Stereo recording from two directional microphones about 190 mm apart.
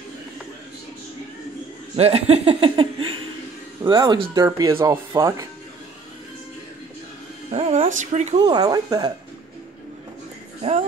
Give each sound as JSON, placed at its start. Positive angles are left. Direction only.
{"t": 2.0, "sound": "speech", "side_deg": -35}
{"t": 7.5, "sound": "speech", "side_deg": -30}
{"t": 8.5, "sound": "speech", "side_deg": -20}